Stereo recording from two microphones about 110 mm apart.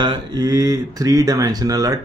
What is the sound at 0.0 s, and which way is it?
A man's voice, 40° right (ahead or behind).